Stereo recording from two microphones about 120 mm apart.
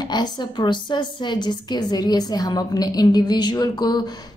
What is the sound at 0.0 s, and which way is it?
A woman's voice, 35° left (ahead or behind).